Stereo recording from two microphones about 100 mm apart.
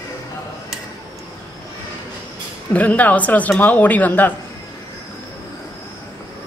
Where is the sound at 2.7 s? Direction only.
15° left (ahead or behind).